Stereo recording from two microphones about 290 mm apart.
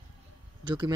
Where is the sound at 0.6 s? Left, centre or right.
Centre.